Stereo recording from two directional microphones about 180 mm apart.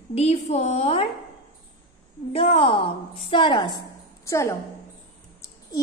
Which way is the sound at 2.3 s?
30° left (ahead or behind).